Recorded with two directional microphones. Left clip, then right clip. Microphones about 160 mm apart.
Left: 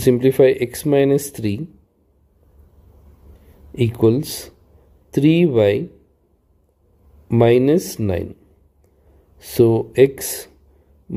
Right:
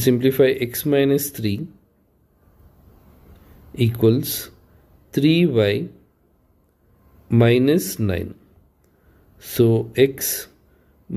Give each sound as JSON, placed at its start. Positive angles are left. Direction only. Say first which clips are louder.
{"t": 0.0, "sound": "speech", "louder": "left 3 dB", "side_deg": 25}
{"t": 3.7, "sound": "speech", "louder": "left 2 dB", "side_deg": 25}
{"t": 7.2, "sound": "speech", "louder": "left 3 dB", "side_deg": 25}
{"t": 9.4, "sound": "speech", "louder": "left 3 dB", "side_deg": 25}